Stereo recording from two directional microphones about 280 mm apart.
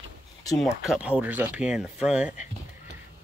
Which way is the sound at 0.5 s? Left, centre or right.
Centre.